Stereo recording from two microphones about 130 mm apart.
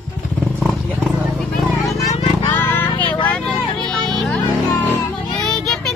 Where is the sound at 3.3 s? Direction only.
10° left (ahead or behind).